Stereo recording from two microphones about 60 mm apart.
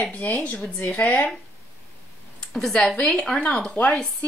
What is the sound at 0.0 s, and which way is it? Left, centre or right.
Speech, left.